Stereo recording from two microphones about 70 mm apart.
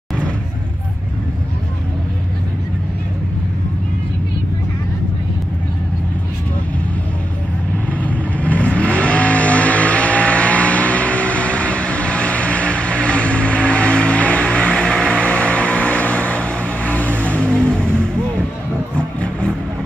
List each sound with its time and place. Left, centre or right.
8.0 s vehicle: left